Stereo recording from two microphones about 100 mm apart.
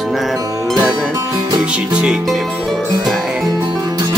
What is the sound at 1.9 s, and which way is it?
Speech, 5° right (ahead or behind).